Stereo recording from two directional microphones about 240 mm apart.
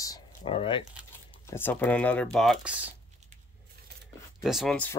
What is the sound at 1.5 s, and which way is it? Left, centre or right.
Speech, centre.